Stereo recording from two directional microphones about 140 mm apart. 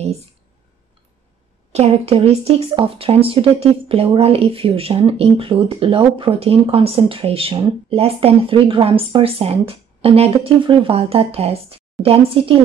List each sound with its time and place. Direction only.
1.7 s speech: 45° right (ahead or behind)